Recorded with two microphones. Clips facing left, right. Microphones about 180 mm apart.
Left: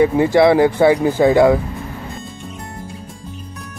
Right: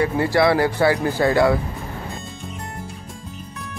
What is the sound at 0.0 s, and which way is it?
Speech, 20° left (ahead or behind).